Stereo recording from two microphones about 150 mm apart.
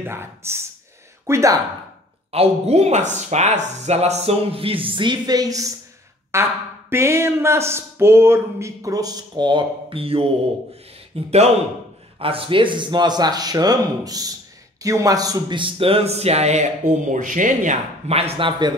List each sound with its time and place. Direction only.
0.0 s speech: 15° right (ahead or behind)
2.3 s a man's voice: 45° right (ahead or behind)